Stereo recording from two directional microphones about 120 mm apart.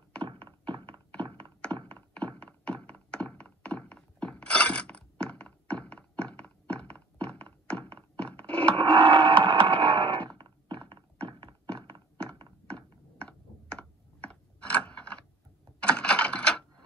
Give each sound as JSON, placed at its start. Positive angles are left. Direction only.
{"t": 0.2, "sound": "thunk", "side_deg": -45}
{"t": 2.1, "sound": "thunk", "side_deg": 10}
{"t": 8.7, "sound": "a sound", "side_deg": -45}
{"t": 11.2, "sound": "thunk", "side_deg": -45}
{"t": 13.2, "sound": "typing", "side_deg": 10}